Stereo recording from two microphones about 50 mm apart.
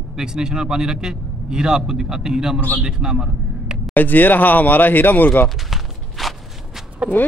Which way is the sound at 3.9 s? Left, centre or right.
Left.